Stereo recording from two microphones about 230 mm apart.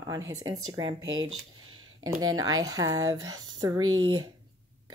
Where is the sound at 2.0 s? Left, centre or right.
Right.